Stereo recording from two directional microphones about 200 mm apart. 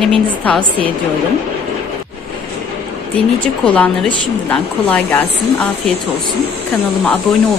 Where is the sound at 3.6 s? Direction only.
5° left (ahead or behind).